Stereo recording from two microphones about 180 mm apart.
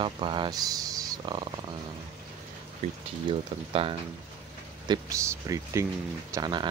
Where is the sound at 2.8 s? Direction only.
35° right (ahead or behind).